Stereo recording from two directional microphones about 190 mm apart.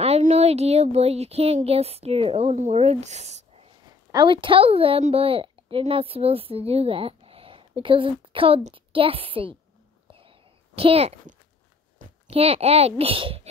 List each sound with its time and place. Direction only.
0.0 s speech: 35° right (ahead or behind)
4.1 s a woman's voice: 25° right (ahead or behind)
10.8 s a child's voice: 30° right (ahead or behind)